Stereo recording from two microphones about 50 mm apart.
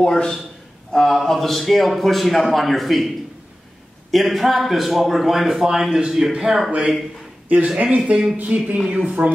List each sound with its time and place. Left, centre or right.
0.0 s a man's voice: centre
4.1 s a man's voice: centre
7.4 s speech: right